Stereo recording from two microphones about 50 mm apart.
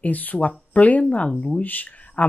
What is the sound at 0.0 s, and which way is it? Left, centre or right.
Speech, left.